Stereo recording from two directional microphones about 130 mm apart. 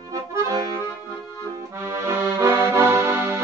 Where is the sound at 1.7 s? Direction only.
20° right (ahead or behind).